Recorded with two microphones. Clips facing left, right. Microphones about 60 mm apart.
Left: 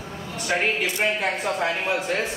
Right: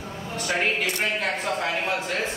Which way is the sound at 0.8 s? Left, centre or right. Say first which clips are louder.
Left 2 dB; centre.